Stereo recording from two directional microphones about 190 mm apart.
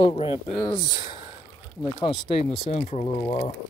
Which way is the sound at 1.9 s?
25° left (ahead or behind).